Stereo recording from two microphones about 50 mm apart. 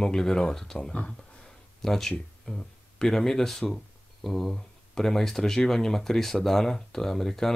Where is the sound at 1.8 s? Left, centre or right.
Centre.